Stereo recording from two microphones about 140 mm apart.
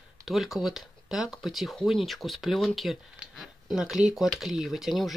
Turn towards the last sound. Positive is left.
turn(degrees=0)  # may be behind; listen again after turning